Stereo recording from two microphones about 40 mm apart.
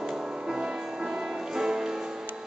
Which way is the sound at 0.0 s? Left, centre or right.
Centre.